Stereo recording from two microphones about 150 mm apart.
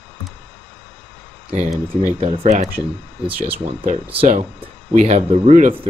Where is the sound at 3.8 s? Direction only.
40° right (ahead or behind).